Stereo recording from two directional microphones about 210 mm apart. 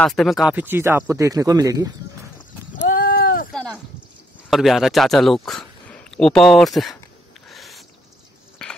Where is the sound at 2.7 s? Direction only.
45° left (ahead or behind).